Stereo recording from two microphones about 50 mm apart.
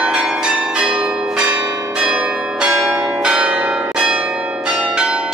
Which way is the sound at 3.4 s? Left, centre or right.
Right.